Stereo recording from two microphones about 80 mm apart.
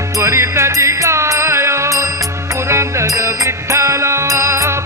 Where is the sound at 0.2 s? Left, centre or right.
Right.